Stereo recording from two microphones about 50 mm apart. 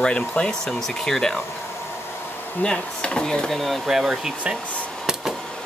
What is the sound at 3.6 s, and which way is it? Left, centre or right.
Speech, centre.